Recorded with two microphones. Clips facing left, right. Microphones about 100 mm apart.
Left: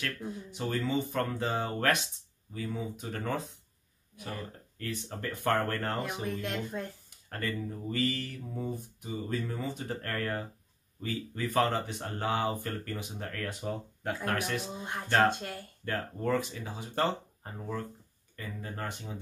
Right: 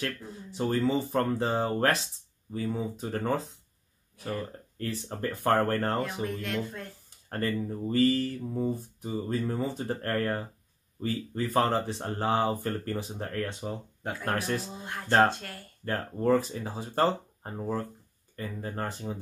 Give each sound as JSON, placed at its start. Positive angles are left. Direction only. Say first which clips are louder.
{"t": 0.0, "sound": "speech", "louder": "right 2 dB", "side_deg": -35}
{"t": 4.7, "sound": "speech", "louder": "right 4 dB", "side_deg": -35}
{"t": 6.2, "sound": "speech", "louder": "right 2 dB", "side_deg": 20}
{"t": 7.2, "sound": "speech", "louder": "right 5 dB", "side_deg": -35}